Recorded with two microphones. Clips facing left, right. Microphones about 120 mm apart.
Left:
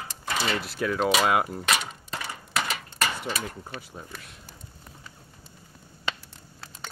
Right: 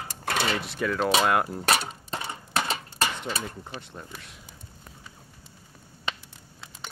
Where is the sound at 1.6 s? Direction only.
35° right (ahead or behind).